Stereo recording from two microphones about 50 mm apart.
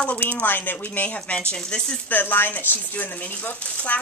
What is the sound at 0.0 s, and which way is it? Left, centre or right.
Speech, left.